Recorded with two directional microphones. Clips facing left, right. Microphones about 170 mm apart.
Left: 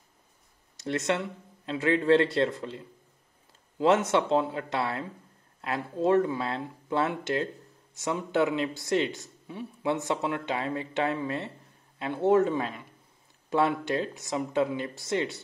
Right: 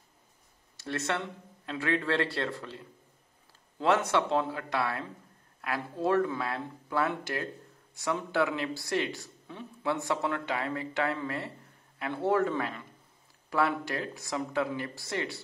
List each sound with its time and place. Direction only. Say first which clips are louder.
0.7 s speech: left 4 dB; 20° left (ahead or behind)
3.8 s speech: left 3 dB; 20° left (ahead or behind)